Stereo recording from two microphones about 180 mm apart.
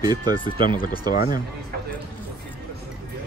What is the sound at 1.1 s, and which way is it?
Speech, 50° left (ahead or behind).